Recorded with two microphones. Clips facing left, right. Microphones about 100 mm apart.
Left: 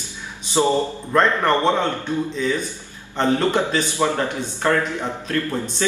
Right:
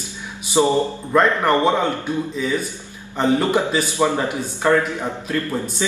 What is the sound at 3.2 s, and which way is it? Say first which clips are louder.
A man's voice: right 1 dB; 10° right (ahead or behind).